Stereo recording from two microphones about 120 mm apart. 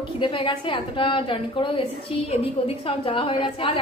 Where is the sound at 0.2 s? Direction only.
45° left (ahead or behind).